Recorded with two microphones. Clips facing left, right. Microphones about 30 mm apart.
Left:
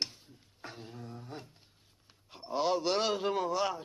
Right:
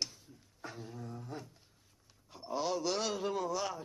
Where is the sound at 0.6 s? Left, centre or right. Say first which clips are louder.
Even; left.